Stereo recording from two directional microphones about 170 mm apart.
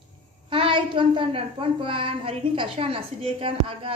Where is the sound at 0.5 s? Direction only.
30° right (ahead or behind).